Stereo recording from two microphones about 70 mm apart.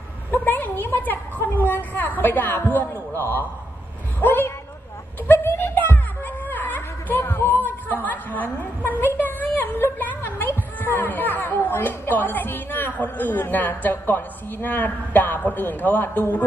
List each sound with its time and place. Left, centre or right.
0.3 s a woman's voice: left